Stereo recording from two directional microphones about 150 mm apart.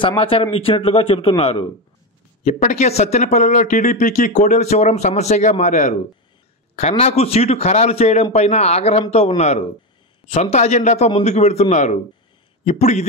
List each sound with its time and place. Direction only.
0.0 s a man's voice: 35° left (ahead or behind)